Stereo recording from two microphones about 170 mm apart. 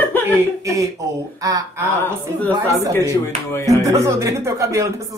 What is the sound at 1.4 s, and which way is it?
Speech, 20° right (ahead or behind).